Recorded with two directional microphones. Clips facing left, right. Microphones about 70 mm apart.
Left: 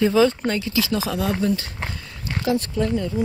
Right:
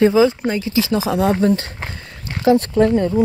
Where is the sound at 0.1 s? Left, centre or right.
Centre.